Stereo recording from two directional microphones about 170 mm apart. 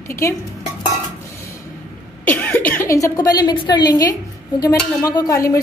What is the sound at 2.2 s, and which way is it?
A woman's voice, 10° left (ahead or behind).